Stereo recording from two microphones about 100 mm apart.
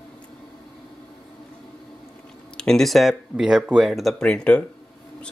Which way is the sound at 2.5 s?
5° left (ahead or behind).